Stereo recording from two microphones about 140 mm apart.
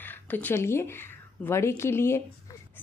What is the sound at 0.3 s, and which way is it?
A woman's voice, 15° left (ahead or behind).